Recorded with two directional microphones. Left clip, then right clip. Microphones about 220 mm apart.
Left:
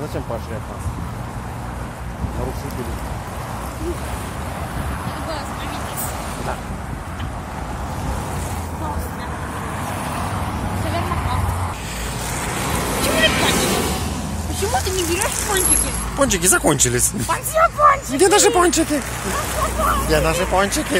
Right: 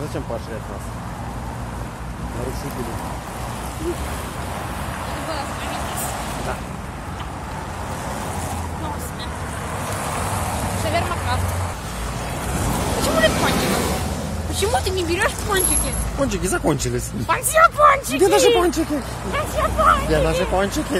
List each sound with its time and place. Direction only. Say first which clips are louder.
13.1 s vehicle: left 1 dB; 40° right (ahead or behind)
14.7 s speech: left 1 dB; 15° right (ahead or behind)
16.2 s speech: left 5 dB; centre (ahead or behind)
17.3 s speech: right 3 dB; 20° right (ahead or behind)
18.2 s speech: left 1 dB; centre (ahead or behind)
19.6 s speech: right 5 dB; 25° right (ahead or behind)
20.1 s speech: left 1 dB; 10° right (ahead or behind)